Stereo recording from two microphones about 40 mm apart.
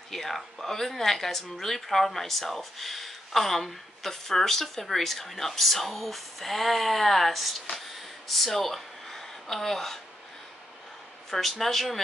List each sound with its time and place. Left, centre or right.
0.1 s speech: centre
11.2 s speech: centre